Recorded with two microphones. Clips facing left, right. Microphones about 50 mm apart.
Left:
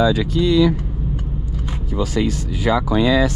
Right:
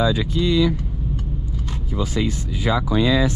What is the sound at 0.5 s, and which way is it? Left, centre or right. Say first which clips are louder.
Speech: left 4 dB; left.